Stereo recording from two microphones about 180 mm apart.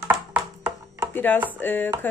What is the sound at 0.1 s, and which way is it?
Music, 10° right (ahead or behind).